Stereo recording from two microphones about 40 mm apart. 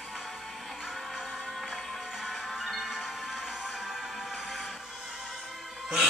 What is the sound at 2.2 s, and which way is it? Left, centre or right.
Music, centre.